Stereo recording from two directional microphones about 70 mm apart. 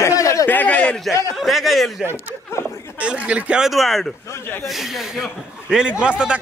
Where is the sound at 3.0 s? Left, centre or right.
Centre.